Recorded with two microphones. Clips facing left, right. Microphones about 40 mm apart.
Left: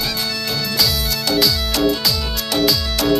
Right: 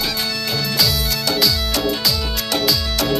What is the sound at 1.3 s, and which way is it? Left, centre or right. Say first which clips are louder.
Music: left 2 dB; centre.